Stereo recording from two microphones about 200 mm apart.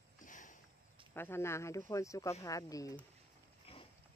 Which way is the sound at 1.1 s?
10° left (ahead or behind).